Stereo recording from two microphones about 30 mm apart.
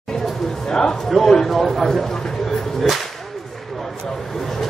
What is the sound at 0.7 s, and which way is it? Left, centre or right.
A man's voice, centre.